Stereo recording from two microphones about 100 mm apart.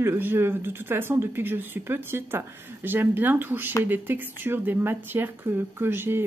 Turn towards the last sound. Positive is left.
turn(degrees=-25)  # may be behind; listen again after turning